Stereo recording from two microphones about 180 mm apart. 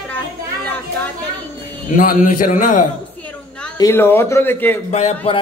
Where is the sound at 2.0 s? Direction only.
45° left (ahead or behind).